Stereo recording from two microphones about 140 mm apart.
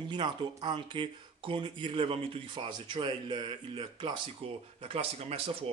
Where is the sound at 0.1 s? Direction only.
35° right (ahead or behind).